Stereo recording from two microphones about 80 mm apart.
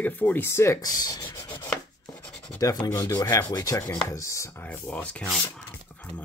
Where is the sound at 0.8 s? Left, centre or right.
Left.